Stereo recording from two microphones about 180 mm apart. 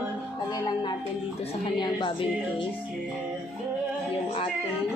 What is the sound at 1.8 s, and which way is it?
Music, 25° left (ahead or behind).